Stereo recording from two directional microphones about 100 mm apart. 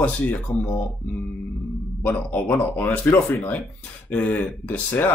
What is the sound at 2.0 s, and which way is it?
Speech, 15° left (ahead or behind).